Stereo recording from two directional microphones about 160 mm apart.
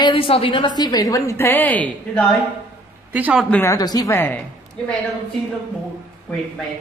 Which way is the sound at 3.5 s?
15° left (ahead or behind).